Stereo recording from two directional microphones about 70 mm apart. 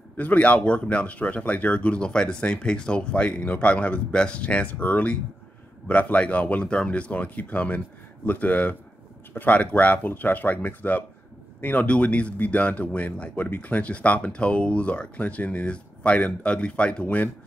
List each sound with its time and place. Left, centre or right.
0.2 s a man's voice: left